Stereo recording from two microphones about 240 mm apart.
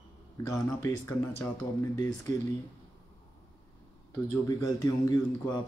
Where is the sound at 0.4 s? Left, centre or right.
Centre.